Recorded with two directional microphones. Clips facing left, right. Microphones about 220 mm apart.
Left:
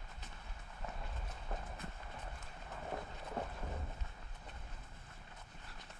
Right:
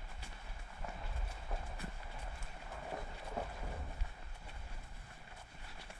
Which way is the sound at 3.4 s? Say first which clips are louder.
Even; 5° right (ahead or behind).